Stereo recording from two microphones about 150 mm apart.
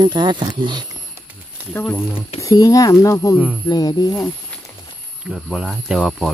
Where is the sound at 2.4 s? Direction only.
20° left (ahead or behind).